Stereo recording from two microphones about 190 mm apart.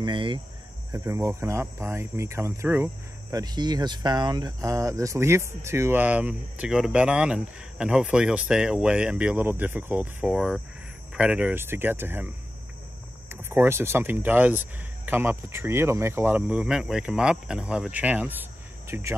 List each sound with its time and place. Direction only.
0.0 s speech: 25° right (ahead or behind)
13.3 s speech: 10° right (ahead or behind)